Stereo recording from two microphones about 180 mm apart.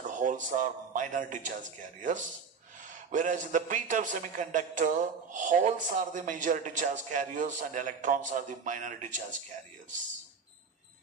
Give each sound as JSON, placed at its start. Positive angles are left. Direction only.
{"t": 0.1, "sound": "a man's voice", "side_deg": -45}